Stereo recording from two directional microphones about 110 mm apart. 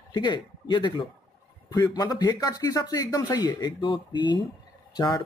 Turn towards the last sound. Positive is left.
turn(degrees=35)  # may be behind; listen again after turning